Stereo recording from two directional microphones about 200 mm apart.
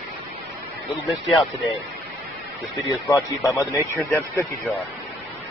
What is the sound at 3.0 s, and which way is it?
Speech, 15° left (ahead or behind).